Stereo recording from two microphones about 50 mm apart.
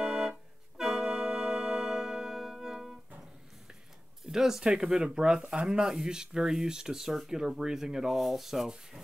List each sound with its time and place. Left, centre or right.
0.0 s organ: centre
4.3 s speech: centre